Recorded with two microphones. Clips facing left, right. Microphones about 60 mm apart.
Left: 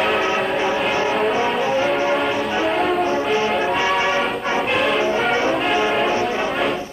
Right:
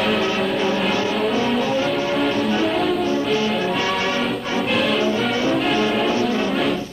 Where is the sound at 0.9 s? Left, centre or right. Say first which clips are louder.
Left 1 dB; left.